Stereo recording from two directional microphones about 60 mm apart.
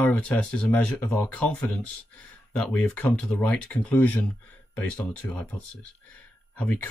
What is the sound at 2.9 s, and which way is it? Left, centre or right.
Speech, left.